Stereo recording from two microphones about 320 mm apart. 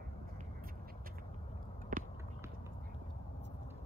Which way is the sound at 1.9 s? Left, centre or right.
Right.